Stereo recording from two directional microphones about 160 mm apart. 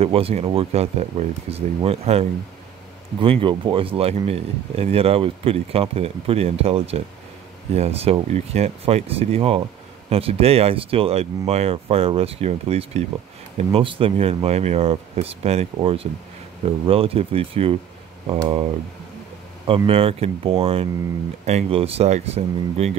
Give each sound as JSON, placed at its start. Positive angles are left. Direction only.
{"t": 0.0, "sound": "speech", "side_deg": -40}
{"t": 19.9, "sound": "speech", "side_deg": -35}